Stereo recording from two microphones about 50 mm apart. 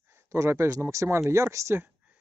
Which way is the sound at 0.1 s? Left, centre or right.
Right.